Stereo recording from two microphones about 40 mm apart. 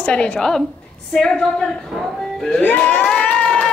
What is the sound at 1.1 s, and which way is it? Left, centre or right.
Speech, centre.